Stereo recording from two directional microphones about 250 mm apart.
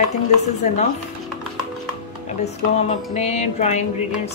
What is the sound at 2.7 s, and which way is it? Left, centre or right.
A woman's voice, left.